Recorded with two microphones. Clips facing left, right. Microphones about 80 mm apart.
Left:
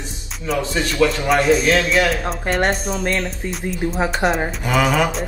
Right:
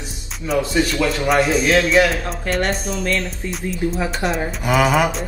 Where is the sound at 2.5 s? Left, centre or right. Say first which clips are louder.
Even; left.